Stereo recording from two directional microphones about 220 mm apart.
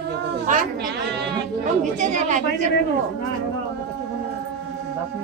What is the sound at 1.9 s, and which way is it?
Speech, 35° right (ahead or behind).